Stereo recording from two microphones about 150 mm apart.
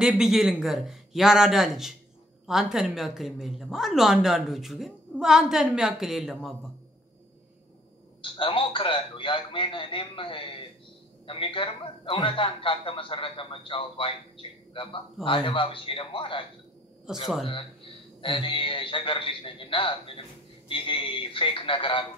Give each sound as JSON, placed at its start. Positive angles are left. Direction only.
{"t": 0.0, "sound": "a woman's voice", "side_deg": -5}
{"t": 8.2, "sound": "a man's voice", "side_deg": 35}
{"t": 17.1, "sound": "a woman's voice", "side_deg": -5}
{"t": 18.2, "sound": "a man's voice", "side_deg": 35}